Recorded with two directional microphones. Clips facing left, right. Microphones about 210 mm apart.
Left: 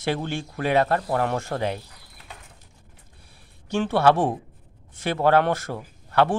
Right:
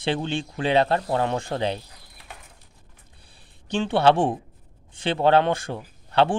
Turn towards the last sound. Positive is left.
turn(degrees=-25)  # may be behind; listen again after turning